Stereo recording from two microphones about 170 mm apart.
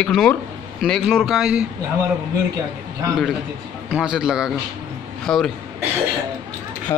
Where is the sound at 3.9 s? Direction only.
5° right (ahead or behind).